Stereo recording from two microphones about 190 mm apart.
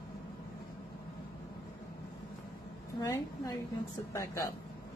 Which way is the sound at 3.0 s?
15° left (ahead or behind).